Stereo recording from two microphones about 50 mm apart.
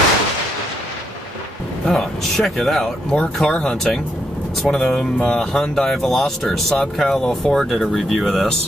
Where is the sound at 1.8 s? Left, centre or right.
Centre.